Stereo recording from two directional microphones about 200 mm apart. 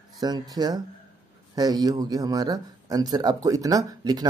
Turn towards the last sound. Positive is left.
turn(degrees=-20)  # may be behind; listen again after turning